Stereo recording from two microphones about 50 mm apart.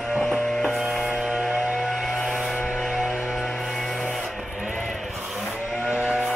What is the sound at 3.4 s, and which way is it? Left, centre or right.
Music, centre.